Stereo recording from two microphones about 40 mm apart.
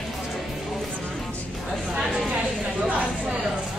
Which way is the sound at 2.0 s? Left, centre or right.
Centre.